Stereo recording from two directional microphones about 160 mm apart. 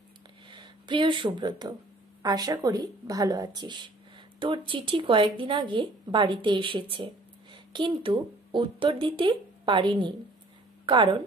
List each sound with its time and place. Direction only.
0.5 s speech: 30° right (ahead or behind)